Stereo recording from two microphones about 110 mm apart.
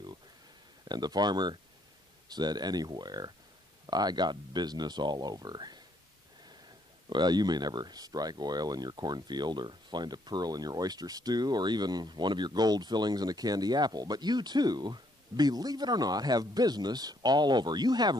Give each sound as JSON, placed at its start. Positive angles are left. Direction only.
{"t": 0.8, "sound": "speech", "side_deg": -40}
{"t": 7.1, "sound": "speech", "side_deg": -40}